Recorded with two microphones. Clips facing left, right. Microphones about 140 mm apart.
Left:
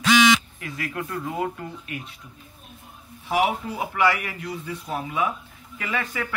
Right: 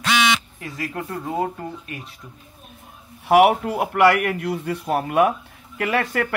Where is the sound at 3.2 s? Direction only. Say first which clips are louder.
Right 9 dB; 65° right (ahead or behind).